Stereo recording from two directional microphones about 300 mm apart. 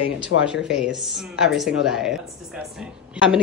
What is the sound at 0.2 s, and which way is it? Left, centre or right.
Speech, left.